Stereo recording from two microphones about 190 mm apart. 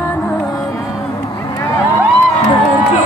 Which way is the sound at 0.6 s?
15° left (ahead or behind).